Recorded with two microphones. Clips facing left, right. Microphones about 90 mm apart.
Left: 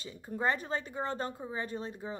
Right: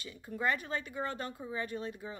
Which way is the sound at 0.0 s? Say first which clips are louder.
Left 2 dB; 35° left (ahead or behind).